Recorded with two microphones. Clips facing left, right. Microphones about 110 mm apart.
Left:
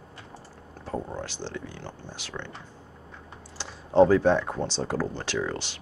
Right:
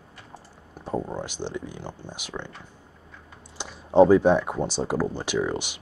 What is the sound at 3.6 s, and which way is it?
Speech, 15° right (ahead or behind).